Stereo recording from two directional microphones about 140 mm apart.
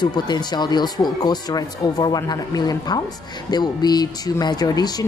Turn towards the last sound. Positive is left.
turn(degrees=30)  # may be behind; listen again after turning